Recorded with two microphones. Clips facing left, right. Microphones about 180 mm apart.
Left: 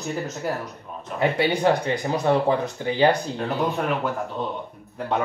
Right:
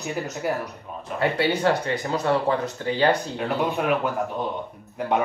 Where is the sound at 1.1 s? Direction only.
15° left (ahead or behind).